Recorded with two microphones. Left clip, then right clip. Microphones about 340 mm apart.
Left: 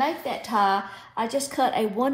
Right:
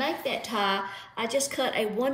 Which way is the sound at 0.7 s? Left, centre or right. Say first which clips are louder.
Left 4 dB; left.